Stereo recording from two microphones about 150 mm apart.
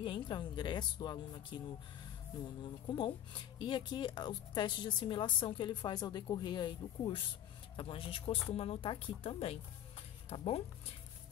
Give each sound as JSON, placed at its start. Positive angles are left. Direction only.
{"t": 0.0, "sound": "a woman's voice", "side_deg": 30}
{"t": 2.9, "sound": "a woman's voice", "side_deg": 30}